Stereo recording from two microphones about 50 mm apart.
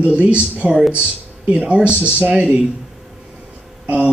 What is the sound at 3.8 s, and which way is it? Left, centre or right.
Speech, right.